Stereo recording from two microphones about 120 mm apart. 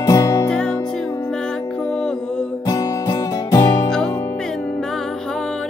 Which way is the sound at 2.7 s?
30° left (ahead or behind).